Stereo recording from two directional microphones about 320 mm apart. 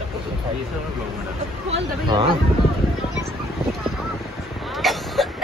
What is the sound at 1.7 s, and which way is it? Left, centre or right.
Speech, centre.